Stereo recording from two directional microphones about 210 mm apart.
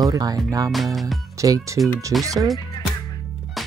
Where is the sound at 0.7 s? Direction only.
Centre (ahead or behind).